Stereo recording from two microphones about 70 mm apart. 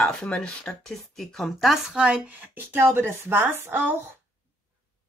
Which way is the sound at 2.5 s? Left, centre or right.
Right.